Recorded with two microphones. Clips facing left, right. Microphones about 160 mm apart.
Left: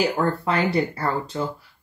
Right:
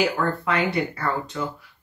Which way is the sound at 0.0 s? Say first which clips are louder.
Left 1 dB; 35° left (ahead or behind).